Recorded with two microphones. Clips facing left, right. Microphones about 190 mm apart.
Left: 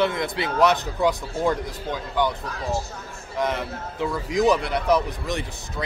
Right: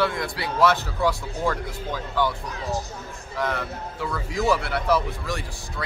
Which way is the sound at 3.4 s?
20° left (ahead or behind).